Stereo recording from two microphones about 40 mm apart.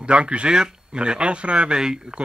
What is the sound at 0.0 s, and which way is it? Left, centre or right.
Speech, right.